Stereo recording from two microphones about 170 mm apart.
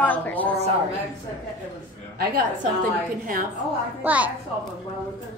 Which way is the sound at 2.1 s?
65° right (ahead or behind).